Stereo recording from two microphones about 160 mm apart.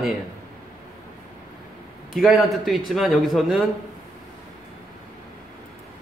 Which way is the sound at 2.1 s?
Centre (ahead or behind).